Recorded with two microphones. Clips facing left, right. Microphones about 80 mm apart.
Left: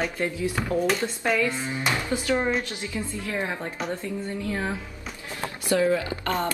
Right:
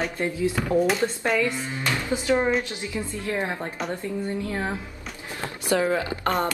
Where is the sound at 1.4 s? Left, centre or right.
Left.